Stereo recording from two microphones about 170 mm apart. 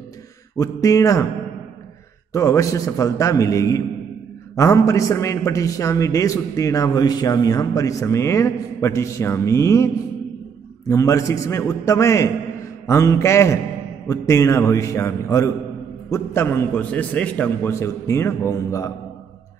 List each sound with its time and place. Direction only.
0.6 s a man's voice: 20° left (ahead or behind)
2.3 s a man's voice: 20° left (ahead or behind)
10.9 s a man's voice: 20° left (ahead or behind)